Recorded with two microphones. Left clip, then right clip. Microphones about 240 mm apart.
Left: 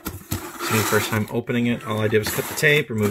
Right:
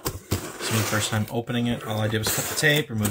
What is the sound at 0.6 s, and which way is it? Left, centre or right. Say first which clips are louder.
Speech: left 6 dB; centre.